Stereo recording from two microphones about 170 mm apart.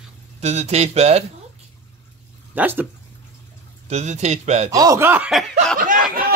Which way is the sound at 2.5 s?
10° right (ahead or behind).